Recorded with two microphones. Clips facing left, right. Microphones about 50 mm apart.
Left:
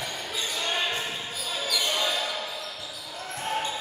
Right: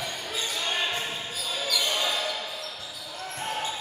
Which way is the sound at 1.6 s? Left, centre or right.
Centre.